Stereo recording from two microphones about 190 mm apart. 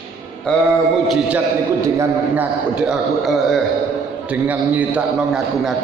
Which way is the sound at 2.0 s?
5° right (ahead or behind).